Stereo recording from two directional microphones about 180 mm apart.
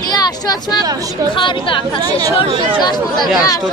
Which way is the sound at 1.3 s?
30° left (ahead or behind).